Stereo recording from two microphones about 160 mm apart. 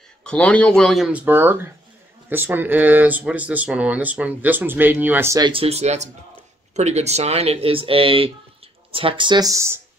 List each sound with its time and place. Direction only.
0.2 s speech: 5° left (ahead or behind); by 5.4 s 15° right (ahead or behind)
5.4 s speech: 35° right (ahead or behind); by 9.8 s 20° right (ahead or behind)